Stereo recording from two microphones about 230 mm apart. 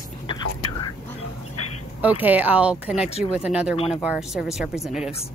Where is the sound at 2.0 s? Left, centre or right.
Centre.